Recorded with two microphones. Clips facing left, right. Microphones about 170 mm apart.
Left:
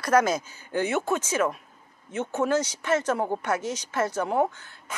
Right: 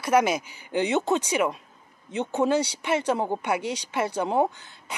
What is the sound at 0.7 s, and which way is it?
A woman's voice, 20° right (ahead or behind).